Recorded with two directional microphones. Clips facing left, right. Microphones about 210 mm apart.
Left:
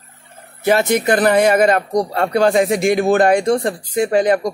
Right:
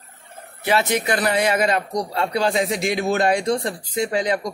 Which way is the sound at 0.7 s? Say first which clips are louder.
Left 6 dB; 45° left (ahead or behind).